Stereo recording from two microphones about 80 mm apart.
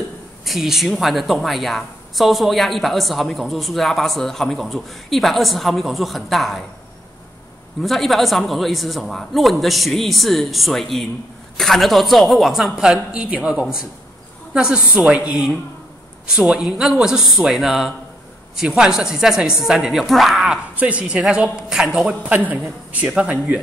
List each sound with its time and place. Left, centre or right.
0.5 s a woman's voice: centre
7.8 s a woman's voice: centre
20.7 s speech: centre
22.3 s speech: centre